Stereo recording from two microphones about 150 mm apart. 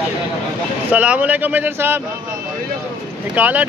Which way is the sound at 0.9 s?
10° right (ahead or behind).